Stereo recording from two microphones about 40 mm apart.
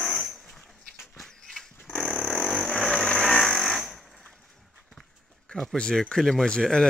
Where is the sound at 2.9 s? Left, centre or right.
Centre.